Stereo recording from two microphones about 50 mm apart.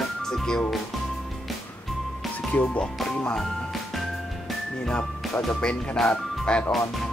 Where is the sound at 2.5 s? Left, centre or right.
Left.